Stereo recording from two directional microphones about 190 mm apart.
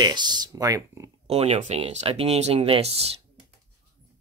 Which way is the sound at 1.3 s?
35° right (ahead or behind).